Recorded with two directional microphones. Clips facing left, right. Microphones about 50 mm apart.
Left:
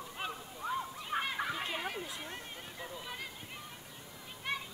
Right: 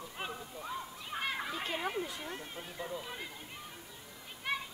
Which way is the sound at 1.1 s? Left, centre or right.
Left.